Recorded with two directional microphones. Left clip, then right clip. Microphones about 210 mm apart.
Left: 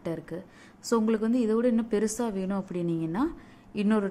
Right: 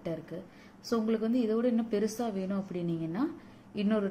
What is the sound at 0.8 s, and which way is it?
A woman's voice, 30° left (ahead or behind).